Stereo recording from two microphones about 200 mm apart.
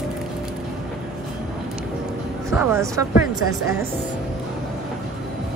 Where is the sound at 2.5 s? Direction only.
10° right (ahead or behind).